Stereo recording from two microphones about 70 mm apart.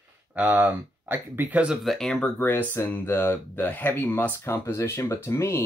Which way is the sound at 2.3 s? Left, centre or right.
Left.